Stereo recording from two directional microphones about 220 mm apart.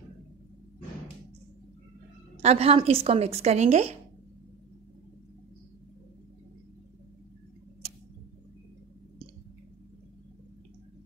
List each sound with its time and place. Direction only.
2.4 s a woman's voice: 25° right (ahead or behind)